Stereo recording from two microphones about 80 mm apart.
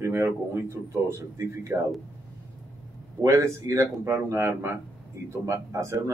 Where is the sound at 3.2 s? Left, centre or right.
Right.